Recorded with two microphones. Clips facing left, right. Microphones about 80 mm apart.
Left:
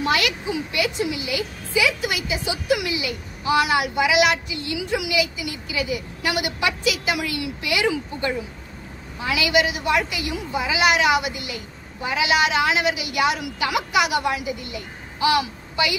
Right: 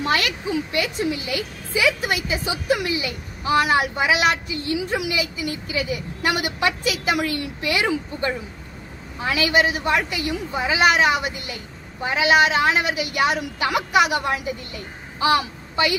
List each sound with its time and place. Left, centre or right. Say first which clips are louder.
0.7 s a woman's voice: even; right